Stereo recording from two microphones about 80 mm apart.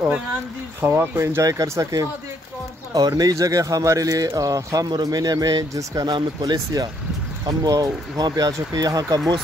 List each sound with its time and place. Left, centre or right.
0.7 s speech: right
1.4 s speech: right
4.8 s speech: right